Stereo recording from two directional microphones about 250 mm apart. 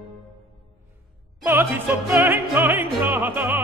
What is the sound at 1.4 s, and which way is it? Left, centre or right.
Opera, centre.